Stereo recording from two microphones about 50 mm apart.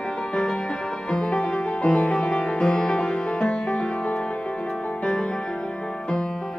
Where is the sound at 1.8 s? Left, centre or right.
Centre.